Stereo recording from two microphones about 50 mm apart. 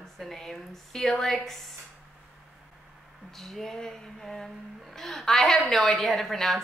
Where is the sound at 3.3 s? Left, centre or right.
Centre.